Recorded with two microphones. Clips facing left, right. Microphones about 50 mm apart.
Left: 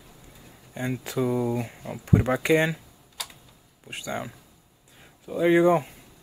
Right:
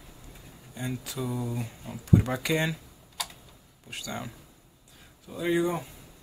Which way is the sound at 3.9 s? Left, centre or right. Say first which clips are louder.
Left 4 dB; left.